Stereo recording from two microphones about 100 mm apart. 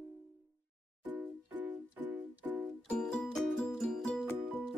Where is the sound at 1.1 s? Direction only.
15° right (ahead or behind).